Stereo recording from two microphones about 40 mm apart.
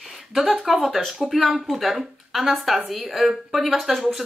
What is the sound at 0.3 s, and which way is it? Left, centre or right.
Speech, centre.